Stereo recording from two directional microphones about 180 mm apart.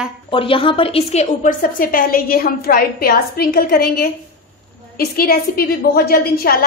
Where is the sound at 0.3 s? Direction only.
30° left (ahead or behind); by 4.1 s 55° left (ahead or behind).